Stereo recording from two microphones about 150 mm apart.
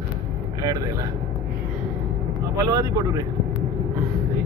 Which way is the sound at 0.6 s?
25° right (ahead or behind).